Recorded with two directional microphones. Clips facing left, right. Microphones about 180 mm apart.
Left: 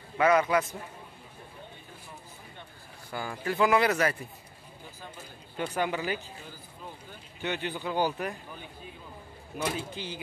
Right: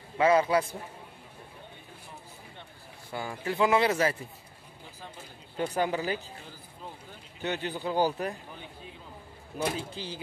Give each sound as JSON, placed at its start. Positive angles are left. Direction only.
{"t": 0.2, "sound": "speech", "side_deg": -30}
{"t": 3.1, "sound": "speech", "side_deg": -25}
{"t": 5.8, "sound": "speech", "side_deg": -35}
{"t": 7.4, "sound": "speech", "side_deg": -35}
{"t": 9.6, "sound": "speech", "side_deg": -35}